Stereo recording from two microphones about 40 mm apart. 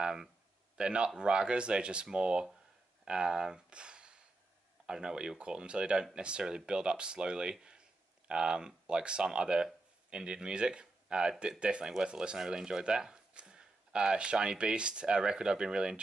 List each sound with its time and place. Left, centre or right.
0.0 s speech: centre
0.7 s speech: right